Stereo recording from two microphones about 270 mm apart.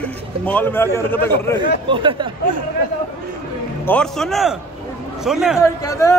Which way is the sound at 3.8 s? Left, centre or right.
Centre.